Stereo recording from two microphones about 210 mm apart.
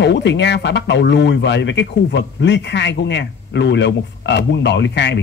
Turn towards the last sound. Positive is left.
turn(degrees=55)  # may be behind; listen again after turning